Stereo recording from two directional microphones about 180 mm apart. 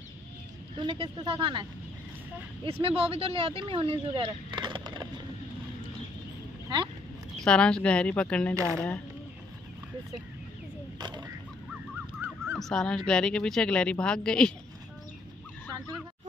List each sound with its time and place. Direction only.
0.7 s speech: 30° right (ahead or behind)
7.3 s speech: 5° left (ahead or behind)
11.0 s a sound: 25° right (ahead or behind)
12.2 s goose: 10° right (ahead or behind)
12.5 s a woman's voice: centre (ahead or behind)